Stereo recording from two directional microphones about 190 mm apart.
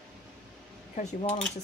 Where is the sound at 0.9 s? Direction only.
35° left (ahead or behind).